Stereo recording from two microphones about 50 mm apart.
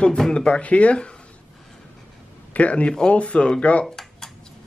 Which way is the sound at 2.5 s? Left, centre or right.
Left.